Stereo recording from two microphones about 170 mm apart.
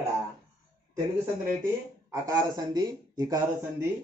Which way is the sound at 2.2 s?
20° right (ahead or behind).